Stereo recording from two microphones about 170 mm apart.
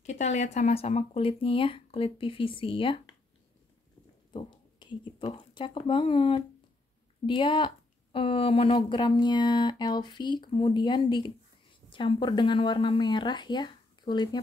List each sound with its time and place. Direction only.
0.0 s speech: 40° left (ahead or behind)
4.3 s speech: 25° left (ahead or behind)